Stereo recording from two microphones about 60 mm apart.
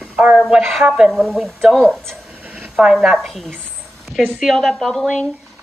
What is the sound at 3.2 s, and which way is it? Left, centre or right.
Speech, centre.